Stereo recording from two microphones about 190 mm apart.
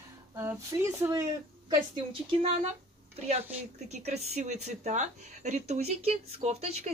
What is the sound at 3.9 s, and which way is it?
Speech, 35° right (ahead or behind).